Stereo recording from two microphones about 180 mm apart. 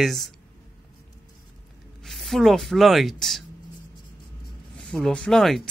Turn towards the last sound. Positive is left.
turn(degrees=0)  # may be behind; listen again after turning